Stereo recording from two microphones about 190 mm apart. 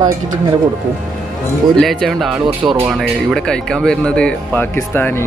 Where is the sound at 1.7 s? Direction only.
Centre (ahead or behind).